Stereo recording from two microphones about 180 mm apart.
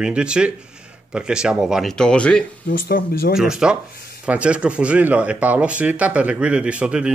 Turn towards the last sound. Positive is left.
turn(degrees=-5)  # may be behind; listen again after turning